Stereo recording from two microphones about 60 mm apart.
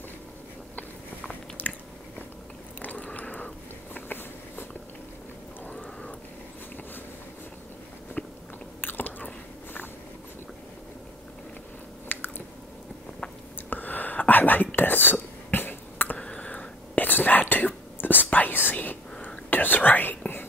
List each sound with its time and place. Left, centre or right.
1.6 s biting: left
2.8 s a sound: left
8.2 s biting: left
12.1 s chewing: left
13.7 s whispering: left
16.2 s whispering: left